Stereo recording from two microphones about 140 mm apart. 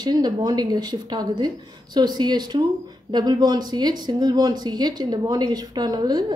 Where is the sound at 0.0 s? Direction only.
30° right (ahead or behind).